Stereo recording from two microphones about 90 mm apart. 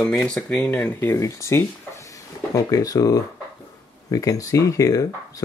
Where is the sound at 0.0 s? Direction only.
5° left (ahead or behind).